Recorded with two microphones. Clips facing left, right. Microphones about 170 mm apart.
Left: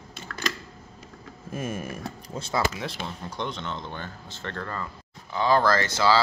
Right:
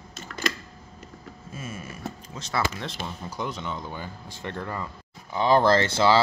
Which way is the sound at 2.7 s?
Centre (ahead or behind).